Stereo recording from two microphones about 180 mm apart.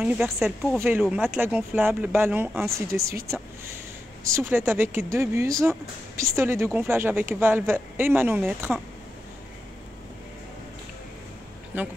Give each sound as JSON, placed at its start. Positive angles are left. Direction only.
{"t": 0.0, "sound": "speech", "side_deg": -10}
{"t": 4.4, "sound": "speech", "side_deg": -10}
{"t": 11.7, "sound": "speech", "side_deg": -10}